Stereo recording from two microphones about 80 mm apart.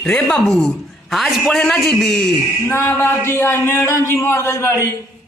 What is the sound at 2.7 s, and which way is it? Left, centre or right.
A man's voice, left.